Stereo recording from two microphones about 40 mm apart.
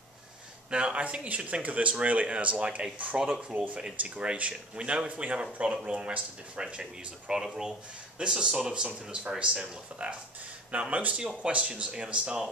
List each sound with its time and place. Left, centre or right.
0.7 s speech: right
0.9 s speech: right
11.4 s speech: right